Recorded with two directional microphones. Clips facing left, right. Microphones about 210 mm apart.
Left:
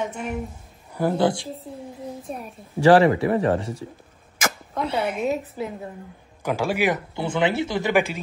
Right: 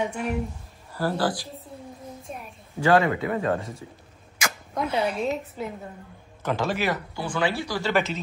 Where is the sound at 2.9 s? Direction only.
30° left (ahead or behind).